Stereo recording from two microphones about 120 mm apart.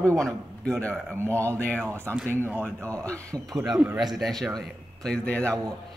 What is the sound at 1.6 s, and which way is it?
Speech, 10° left (ahead or behind).